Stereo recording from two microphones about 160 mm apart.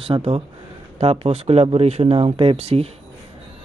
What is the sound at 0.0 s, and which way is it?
Speech, 40° right (ahead or behind).